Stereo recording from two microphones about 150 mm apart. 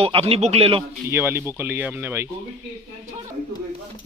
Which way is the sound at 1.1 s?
15° right (ahead or behind).